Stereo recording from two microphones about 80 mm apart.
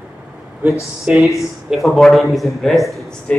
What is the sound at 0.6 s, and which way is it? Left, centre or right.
Speech, centre.